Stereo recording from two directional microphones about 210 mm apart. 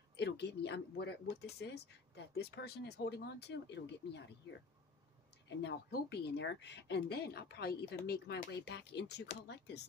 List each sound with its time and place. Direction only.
0.1 s speech: 55° left (ahead or behind)